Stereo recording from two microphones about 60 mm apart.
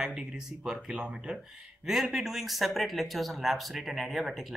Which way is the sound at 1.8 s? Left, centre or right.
Centre.